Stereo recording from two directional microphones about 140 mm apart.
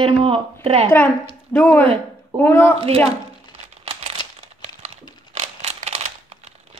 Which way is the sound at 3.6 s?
50° right (ahead or behind).